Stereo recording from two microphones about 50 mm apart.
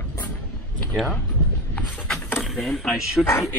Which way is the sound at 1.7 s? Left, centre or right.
Left.